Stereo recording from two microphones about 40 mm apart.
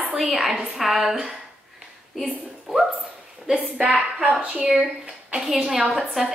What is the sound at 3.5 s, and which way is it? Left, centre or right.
A woman's voice, right.